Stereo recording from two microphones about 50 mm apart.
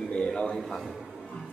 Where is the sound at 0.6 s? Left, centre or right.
Centre.